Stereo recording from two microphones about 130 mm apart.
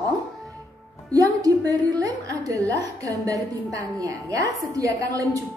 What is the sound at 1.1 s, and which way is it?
A woman's voice, 30° right (ahead or behind).